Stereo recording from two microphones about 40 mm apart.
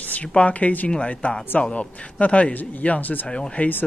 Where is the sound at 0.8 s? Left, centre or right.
Left.